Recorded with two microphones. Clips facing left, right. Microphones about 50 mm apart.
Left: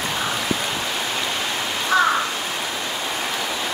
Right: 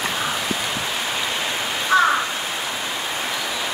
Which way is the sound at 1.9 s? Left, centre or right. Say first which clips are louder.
Right 2 dB; centre.